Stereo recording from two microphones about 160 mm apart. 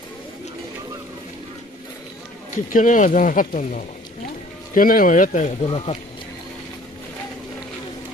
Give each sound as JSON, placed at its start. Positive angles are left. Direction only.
{"t": 2.5, "sound": "speech", "side_deg": 55}
{"t": 5.7, "sound": "speech", "side_deg": 35}